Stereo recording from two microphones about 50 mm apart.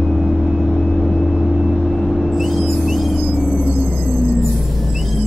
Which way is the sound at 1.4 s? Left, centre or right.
Centre.